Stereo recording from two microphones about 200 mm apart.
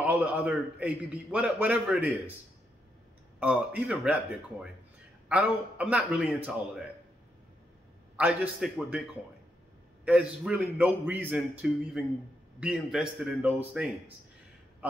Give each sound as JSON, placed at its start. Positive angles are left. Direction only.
{"t": 0.0, "sound": "a man's voice", "side_deg": -5}
{"t": 3.3, "sound": "a man's voice", "side_deg": -5}
{"t": 8.2, "sound": "a man's voice", "side_deg": -5}